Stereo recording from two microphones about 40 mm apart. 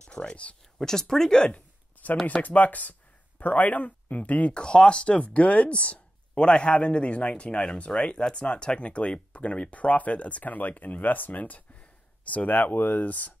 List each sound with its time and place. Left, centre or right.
0.1 s speech: left
0.7 s speech: centre
1.5 s a sound: left
2.4 s speech: left
4.6 s speech: left